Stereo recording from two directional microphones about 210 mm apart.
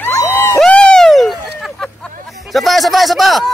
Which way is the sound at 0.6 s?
5° left (ahead or behind).